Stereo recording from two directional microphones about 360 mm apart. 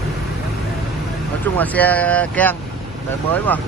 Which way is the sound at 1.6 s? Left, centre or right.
Centre.